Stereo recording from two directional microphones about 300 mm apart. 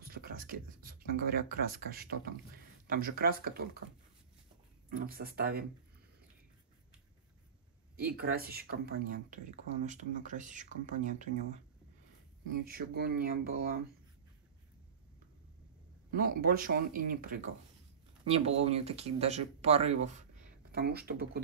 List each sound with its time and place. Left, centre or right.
0.0 s speech: right
4.8 s speech: right
8.0 s speech: right
12.6 s speech: right
16.1 s speech: right